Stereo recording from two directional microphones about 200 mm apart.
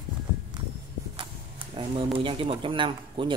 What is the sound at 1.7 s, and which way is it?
Speech, 25° right (ahead or behind).